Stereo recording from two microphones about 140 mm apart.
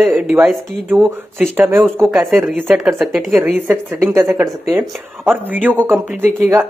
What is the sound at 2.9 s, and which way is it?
Speech, centre (ahead or behind).